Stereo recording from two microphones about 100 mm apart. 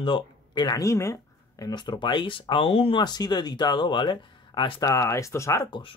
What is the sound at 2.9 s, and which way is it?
Speech, 45° left (ahead or behind).